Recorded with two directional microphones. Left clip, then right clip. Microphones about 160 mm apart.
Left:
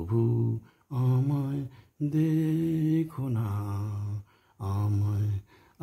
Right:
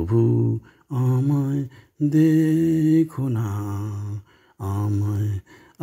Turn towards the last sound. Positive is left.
turn(degrees=-25)  # may be behind; listen again after turning